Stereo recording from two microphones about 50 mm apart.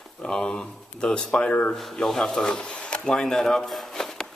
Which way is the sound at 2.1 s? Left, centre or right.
Centre.